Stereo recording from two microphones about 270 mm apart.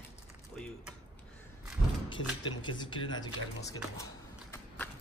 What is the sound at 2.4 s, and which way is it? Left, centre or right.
Speech, centre.